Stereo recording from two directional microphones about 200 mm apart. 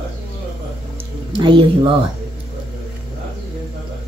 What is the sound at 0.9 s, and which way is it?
Music, 25° right (ahead or behind).